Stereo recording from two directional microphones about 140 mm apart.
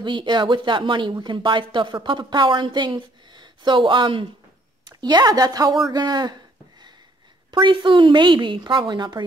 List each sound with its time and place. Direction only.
0.0 s a woman's voice: 35° right (ahead or behind)
5.9 s a sound: 30° right (ahead or behind)
7.5 s speech: 35° right (ahead or behind)